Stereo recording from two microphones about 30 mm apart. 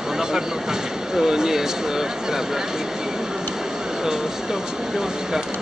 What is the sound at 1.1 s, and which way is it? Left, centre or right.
Speech, right.